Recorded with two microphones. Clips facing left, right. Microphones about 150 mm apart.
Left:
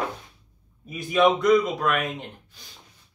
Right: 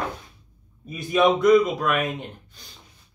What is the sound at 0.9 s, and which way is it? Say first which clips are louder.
Speech: right 1 dB; centre (ahead or behind).